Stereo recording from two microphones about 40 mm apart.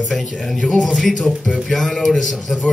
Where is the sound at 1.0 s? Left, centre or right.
Centre.